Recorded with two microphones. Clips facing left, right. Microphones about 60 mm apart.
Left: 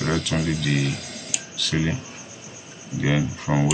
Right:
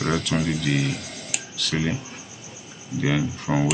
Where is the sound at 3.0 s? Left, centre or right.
Centre.